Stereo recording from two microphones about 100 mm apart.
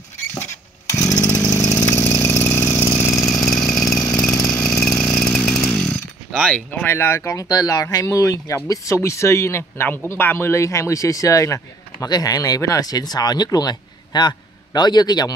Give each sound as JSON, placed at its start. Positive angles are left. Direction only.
{"t": 0.3, "sound": "chainsaw", "side_deg": 25}
{"t": 1.9, "sound": "engine", "side_deg": 30}
{"t": 3.3, "sound": "chainsaw", "side_deg": 0}
{"t": 6.5, "sound": "speech", "side_deg": 15}
{"t": 7.4, "sound": "speech", "side_deg": 40}